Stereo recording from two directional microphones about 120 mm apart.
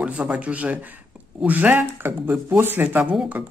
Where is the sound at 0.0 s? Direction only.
10° right (ahead or behind).